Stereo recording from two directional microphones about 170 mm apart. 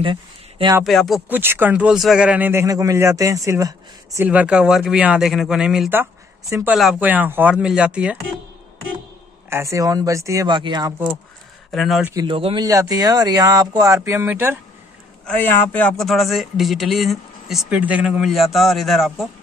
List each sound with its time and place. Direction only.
0.0 s speech: 30° right (ahead or behind)
0.8 s a man's voice: centre (ahead or behind)
1.3 s speech: 10° right (ahead or behind)
9.5 s speech: 15° right (ahead or behind)
11.7 s a man's voice: centre (ahead or behind)
12.0 s speech: 15° right (ahead or behind)
12.3 s speech: 30° right (ahead or behind)
12.6 s speech: 20° right (ahead or behind)
15.2 s a man's voice: 10° left (ahead or behind)